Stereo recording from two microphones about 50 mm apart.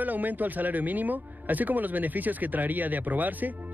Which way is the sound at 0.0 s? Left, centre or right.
Right.